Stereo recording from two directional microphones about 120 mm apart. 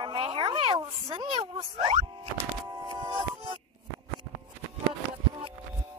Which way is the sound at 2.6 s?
30° right (ahead or behind).